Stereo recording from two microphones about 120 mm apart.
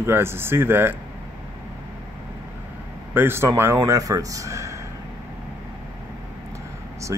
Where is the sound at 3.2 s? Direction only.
20° right (ahead or behind).